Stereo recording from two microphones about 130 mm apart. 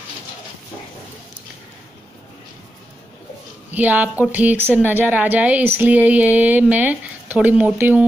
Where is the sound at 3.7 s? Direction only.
10° right (ahead or behind).